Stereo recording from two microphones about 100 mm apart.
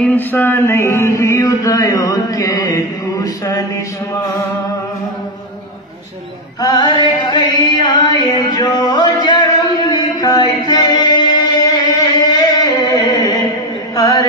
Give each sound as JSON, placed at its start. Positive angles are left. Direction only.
{"t": 0.1, "sound": "mantra", "side_deg": 20}
{"t": 6.6, "sound": "chant", "side_deg": 45}
{"t": 8.6, "sound": "a sound", "side_deg": 45}
{"t": 13.9, "sound": "chant", "side_deg": 40}